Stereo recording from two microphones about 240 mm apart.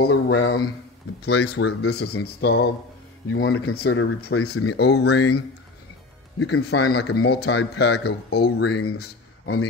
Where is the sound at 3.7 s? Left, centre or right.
Left.